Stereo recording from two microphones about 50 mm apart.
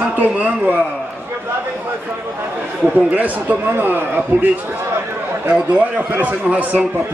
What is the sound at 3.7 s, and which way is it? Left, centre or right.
Speech, right.